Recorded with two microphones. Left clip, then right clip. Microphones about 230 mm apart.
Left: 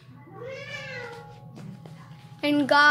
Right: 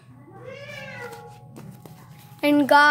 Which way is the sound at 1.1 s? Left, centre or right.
Right.